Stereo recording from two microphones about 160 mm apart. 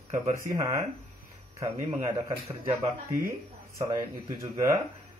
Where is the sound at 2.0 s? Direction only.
20° right (ahead or behind).